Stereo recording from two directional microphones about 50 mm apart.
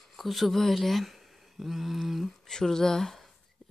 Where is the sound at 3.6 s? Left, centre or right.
Centre.